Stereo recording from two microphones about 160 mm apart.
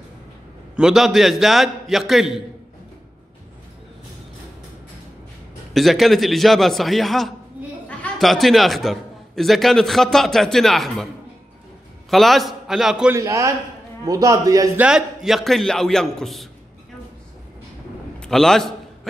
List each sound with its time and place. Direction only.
0.7 s a man's voice: 5° right (ahead or behind)
5.7 s a man's voice: centre (ahead or behind)
12.1 s a man's voice: centre (ahead or behind)
13.1 s a man's voice: 20° right (ahead or behind)
14.8 s a man's voice: 5° right (ahead or behind)
18.2 s a man's voice: 5° left (ahead or behind)